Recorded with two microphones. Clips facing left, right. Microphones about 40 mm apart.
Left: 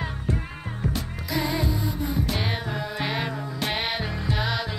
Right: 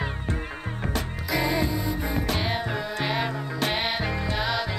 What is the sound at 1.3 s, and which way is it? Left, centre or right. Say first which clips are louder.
Music: right 1 dB; centre.